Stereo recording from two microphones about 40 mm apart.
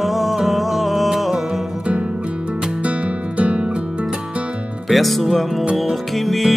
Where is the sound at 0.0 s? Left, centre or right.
Centre.